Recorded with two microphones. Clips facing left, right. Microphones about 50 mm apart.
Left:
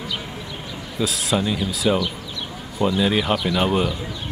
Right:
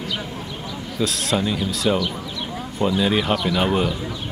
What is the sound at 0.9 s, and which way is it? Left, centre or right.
Speech, centre.